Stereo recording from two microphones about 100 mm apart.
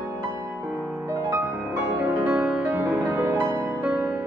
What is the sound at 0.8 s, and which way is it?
Music, 30° right (ahead or behind).